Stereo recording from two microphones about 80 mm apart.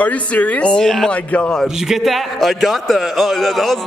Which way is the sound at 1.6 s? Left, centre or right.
Centre.